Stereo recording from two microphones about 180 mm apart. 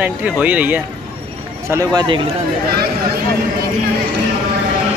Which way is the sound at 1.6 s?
20° right (ahead or behind).